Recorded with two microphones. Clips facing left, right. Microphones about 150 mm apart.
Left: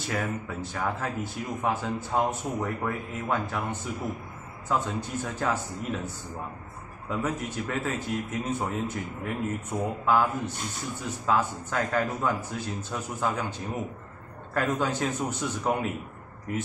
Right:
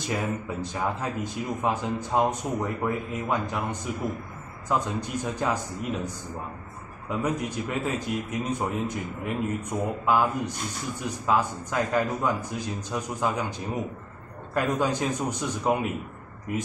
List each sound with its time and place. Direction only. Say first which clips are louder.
0.0 s a man's voice: right 2 dB; 15° right (ahead or behind)